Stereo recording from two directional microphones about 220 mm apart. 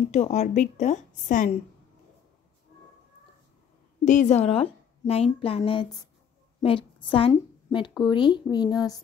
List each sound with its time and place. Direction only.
0.1 s a woman's voice: 30° left (ahead or behind)
4.0 s a woman's voice: 35° left (ahead or behind); by 8.7 s 20° left (ahead or behind)